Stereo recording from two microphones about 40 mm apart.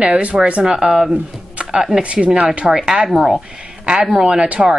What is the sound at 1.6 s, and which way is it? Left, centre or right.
Music, centre.